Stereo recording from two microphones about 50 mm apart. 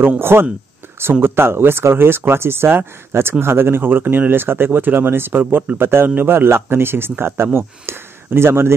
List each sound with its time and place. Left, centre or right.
0.2 s speech: right